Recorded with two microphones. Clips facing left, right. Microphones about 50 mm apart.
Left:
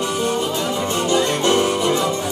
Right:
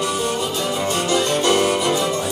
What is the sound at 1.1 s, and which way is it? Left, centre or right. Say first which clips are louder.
Music: left 1 dB; left.